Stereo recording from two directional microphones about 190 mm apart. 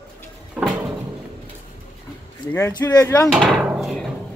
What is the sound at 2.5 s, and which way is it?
Speech, 20° left (ahead or behind).